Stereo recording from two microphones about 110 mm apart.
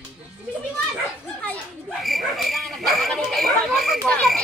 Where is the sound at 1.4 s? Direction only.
10° left (ahead or behind).